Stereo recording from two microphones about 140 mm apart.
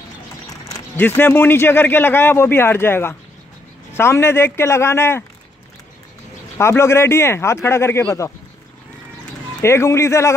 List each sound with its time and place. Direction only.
0.5 s speech: 20° left (ahead or behind)
6.6 s speech: 20° left (ahead or behind)
9.6 s speech: 20° left (ahead or behind)